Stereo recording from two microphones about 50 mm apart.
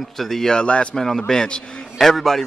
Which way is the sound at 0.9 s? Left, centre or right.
Centre.